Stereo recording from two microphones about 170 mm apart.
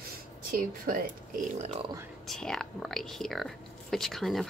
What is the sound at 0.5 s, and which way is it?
Speech, 55° right (ahead or behind).